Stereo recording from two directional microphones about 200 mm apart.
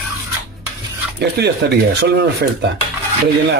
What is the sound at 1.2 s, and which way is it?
Speech, 55° right (ahead or behind).